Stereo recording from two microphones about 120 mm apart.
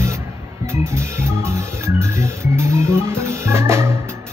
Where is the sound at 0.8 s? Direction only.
25° right (ahead or behind).